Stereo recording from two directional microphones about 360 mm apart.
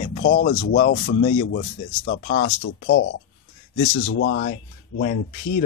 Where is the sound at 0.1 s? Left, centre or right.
Left.